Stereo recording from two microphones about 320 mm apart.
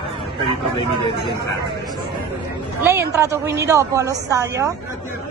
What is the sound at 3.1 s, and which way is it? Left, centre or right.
A woman's voice, centre.